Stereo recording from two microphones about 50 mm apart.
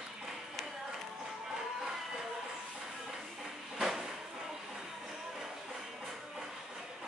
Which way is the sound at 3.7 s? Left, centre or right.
Centre.